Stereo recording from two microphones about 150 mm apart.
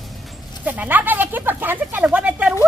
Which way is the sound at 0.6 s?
10° right (ahead or behind).